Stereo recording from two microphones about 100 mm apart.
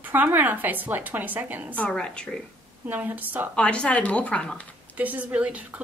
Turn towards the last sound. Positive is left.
turn(degrees=-10)  # may be behind; listen again after turning